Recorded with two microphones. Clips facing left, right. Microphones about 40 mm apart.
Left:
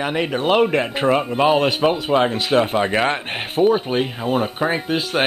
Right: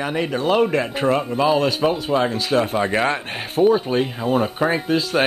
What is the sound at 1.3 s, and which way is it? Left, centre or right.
Speech, left.